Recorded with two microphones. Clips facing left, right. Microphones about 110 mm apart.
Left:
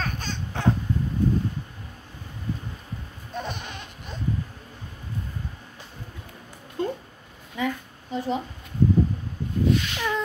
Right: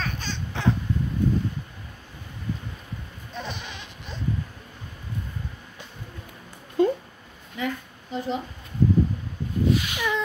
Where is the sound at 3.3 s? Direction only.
45° left (ahead or behind).